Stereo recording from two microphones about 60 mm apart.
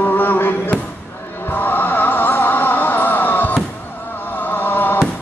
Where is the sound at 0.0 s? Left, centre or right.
Left.